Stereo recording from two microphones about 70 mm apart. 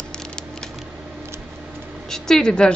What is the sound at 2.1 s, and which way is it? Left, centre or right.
Speech, centre.